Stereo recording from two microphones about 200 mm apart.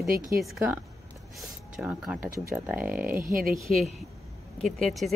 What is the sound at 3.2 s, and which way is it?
Speech, 45° right (ahead or behind).